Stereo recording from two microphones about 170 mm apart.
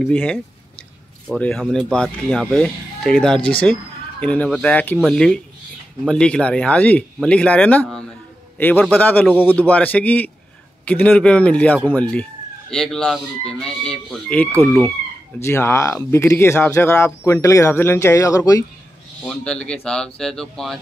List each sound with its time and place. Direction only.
0.0 s a man's voice: 5° left (ahead or behind)
15.3 s speech: 15° left (ahead or behind)
19.2 s speech: 5° left (ahead or behind)